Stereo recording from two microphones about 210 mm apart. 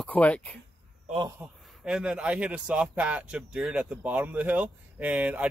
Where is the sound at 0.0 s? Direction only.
5° left (ahead or behind).